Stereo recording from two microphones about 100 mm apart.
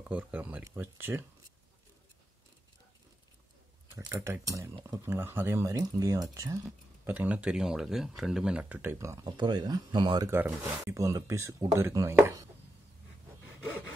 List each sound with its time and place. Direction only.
0.1 s speech: 15° right (ahead or behind)
4.1 s speech: 30° right (ahead or behind)
7.1 s speech: 15° right (ahead or behind)
8.9 s speech: 30° right (ahead or behind)
9.2 s speech: 45° right (ahead or behind)
10.2 s speech: 25° right (ahead or behind)